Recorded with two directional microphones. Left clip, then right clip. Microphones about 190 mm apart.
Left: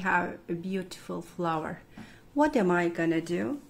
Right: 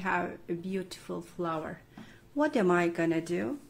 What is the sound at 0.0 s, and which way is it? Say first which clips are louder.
A woman's voice: left 4 dB; centre (ahead or behind).